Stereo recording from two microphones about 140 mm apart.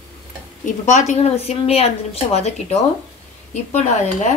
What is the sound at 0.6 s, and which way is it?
A woman's voice, 60° left (ahead or behind).